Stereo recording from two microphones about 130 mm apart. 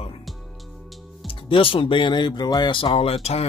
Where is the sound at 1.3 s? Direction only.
40° left (ahead or behind).